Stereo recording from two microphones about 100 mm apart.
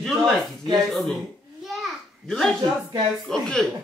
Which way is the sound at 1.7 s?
5° left (ahead or behind).